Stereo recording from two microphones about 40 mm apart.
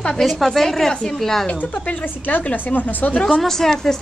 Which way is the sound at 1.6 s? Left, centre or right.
Left.